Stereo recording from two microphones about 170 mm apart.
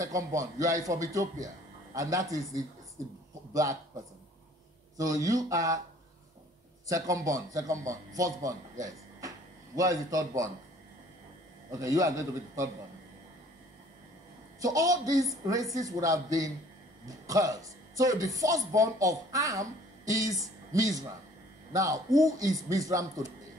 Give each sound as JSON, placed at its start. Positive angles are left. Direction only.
{"t": 0.0, "sound": "a man's voice", "side_deg": -20}
{"t": 4.9, "sound": "a man's voice", "side_deg": -20}
{"t": 6.9, "sound": "a man's voice", "side_deg": -20}
{"t": 11.7, "sound": "a man's voice", "side_deg": -20}
{"t": 14.6, "sound": "a man's voice", "side_deg": -20}